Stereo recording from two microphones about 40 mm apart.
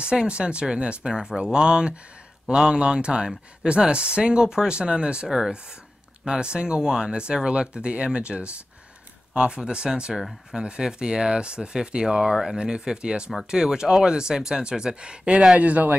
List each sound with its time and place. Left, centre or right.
0.3 s speech: right
9.6 s speech: centre
15.6 s a man's voice: right